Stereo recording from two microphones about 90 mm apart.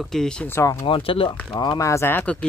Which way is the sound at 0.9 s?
90° left.